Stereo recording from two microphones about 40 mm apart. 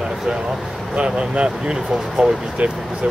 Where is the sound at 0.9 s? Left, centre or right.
Right.